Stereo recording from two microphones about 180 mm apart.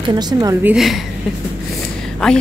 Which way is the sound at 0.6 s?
Centre (ahead or behind).